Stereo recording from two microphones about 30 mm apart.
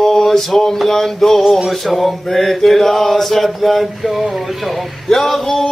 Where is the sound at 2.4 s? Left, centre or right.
Centre.